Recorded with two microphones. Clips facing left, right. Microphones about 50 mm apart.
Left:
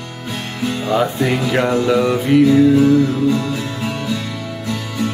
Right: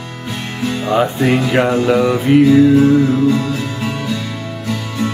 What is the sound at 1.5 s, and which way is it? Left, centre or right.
Music, centre.